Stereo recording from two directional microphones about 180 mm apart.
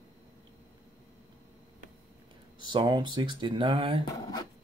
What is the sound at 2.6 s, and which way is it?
Speech, 25° right (ahead or behind).